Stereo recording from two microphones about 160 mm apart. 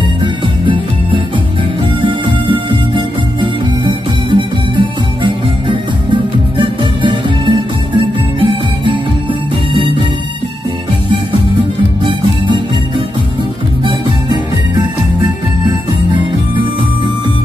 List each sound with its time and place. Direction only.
0.2 s music: 30° right (ahead or behind)
12.0 s music: 30° right (ahead or behind)